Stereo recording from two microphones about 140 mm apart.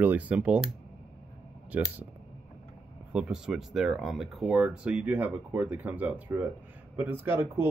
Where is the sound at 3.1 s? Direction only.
5° right (ahead or behind).